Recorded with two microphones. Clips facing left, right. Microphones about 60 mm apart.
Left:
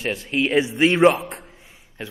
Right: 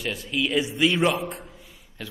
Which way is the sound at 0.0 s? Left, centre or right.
Left.